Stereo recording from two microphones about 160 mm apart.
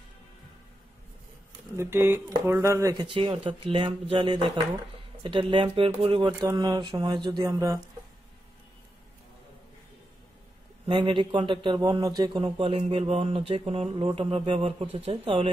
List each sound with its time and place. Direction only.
1.8 s speech: 15° right (ahead or behind)
10.9 s speech: 30° right (ahead or behind)